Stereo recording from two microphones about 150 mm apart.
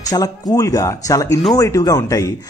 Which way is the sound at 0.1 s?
25° left (ahead or behind).